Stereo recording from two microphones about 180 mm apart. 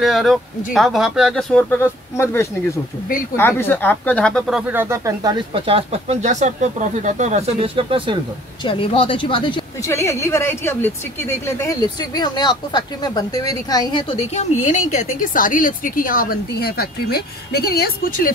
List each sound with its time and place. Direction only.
0.0 s speech: centre (ahead or behind); by 8.2 s 30° right (ahead or behind)
8.6 s speech: 30° left (ahead or behind)
9.8 s speech: 15° left (ahead or behind)
14.3 s a woman's voice: 40° left (ahead or behind)